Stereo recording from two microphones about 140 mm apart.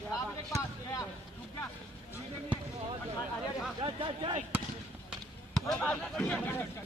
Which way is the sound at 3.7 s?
35° right (ahead or behind).